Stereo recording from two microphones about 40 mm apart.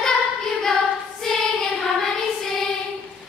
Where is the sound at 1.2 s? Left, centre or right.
Centre.